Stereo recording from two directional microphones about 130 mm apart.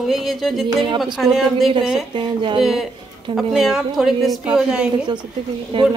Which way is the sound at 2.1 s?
40° right (ahead or behind).